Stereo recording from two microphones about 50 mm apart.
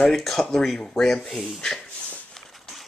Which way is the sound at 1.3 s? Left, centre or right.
Centre.